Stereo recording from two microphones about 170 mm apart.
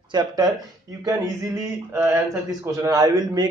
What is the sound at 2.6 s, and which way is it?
Speech, 20° right (ahead or behind).